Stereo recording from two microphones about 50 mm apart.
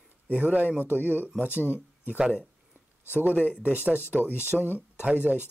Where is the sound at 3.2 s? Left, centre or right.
Right.